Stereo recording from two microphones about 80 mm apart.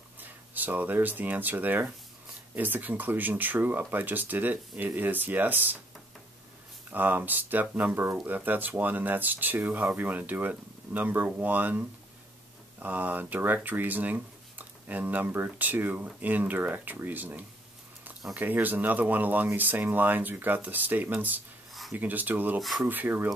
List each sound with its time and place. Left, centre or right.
0.2 s speech: right
6.9 s speech: right
22.6 s speech: centre
22.8 s speech: right